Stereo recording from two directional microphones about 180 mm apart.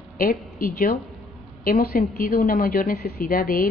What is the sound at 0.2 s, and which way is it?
A woman's voice, 55° left (ahead or behind).